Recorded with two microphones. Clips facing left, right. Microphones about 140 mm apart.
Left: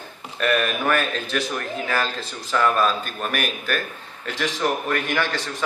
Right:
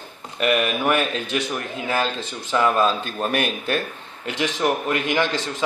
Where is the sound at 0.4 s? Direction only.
15° right (ahead or behind).